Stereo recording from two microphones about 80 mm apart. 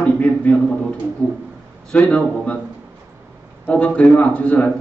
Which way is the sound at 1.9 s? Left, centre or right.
Centre.